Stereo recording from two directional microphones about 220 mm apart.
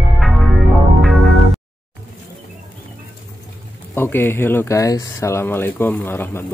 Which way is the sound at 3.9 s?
10° left (ahead or behind).